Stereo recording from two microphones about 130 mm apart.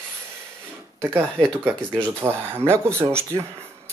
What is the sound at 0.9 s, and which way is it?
Speech, 15° right (ahead or behind).